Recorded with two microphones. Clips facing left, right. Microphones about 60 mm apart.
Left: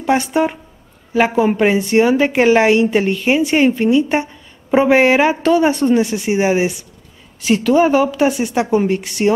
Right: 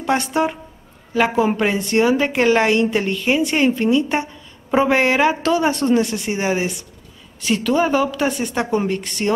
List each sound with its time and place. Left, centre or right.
0.0 s a woman's voice: centre